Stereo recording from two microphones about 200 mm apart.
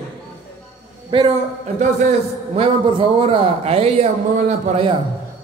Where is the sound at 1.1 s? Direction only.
30° right (ahead or behind).